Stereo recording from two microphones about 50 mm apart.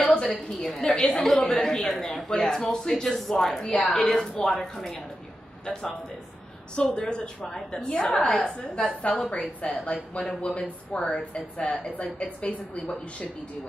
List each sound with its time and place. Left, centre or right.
0.6 s a man's voice: centre
3.7 s a man's voice: centre
6.7 s a woman's voice: centre
12.0 s a woman's voice: left